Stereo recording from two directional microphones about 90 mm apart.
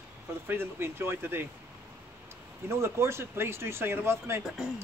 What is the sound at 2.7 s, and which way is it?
A man's voice, 30° right (ahead or behind).